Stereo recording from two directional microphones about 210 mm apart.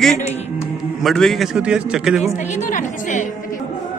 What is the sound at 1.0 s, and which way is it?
A man's voice, centre (ahead or behind).